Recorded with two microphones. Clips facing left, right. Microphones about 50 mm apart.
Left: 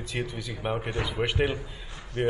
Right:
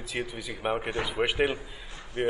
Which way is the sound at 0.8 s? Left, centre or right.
Right.